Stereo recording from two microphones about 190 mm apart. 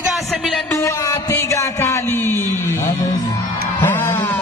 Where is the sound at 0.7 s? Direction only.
15° left (ahead or behind).